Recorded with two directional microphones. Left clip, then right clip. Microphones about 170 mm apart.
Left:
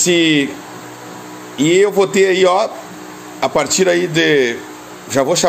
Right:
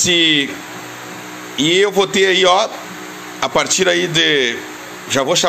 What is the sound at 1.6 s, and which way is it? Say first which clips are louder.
Speech: left 1 dB; 10° left (ahead or behind).